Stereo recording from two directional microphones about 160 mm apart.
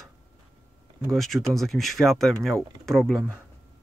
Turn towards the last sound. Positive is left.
turn(degrees=0)  # may be behind; listen again after turning